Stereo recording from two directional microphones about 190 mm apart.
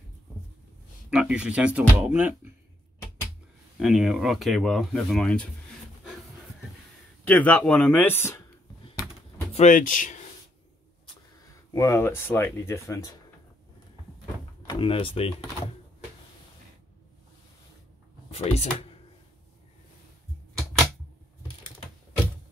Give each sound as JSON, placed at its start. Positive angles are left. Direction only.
{"t": 1.1, "sound": "speech", "side_deg": -5}
{"t": 3.8, "sound": "speech", "side_deg": 0}
{"t": 7.2, "sound": "speech", "side_deg": 5}
{"t": 9.5, "sound": "speech", "side_deg": 40}
{"t": 11.7, "sound": "speech", "side_deg": 15}
{"t": 14.7, "sound": "speech", "side_deg": 25}
{"t": 18.3, "sound": "speech", "side_deg": 35}